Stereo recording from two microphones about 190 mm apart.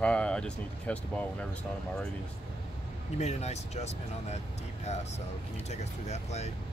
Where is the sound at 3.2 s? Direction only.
35° left (ahead or behind).